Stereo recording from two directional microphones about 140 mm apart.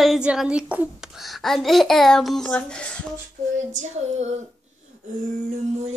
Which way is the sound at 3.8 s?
55° right (ahead or behind).